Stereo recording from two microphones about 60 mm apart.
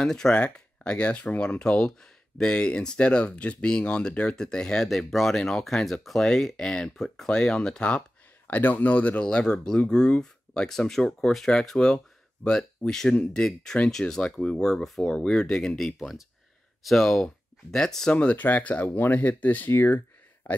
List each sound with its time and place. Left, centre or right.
0.0 s speech: centre
4.8 s speech: centre
8.5 s speech: left; by 18.1 s centre
18.1 s speech: left
20.4 s a sound: left